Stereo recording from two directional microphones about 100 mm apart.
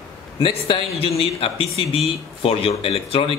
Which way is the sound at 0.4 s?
70° left (ahead or behind).